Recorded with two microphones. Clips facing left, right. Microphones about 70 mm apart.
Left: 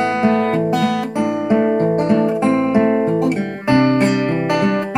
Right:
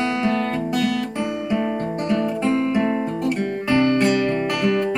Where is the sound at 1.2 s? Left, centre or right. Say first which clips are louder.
Left 6 dB; left.